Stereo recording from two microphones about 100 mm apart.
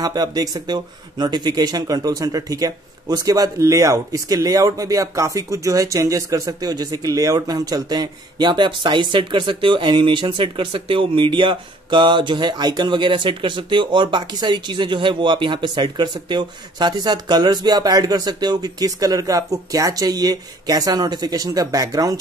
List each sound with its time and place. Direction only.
0.0 s speech: 40° right (ahead or behind)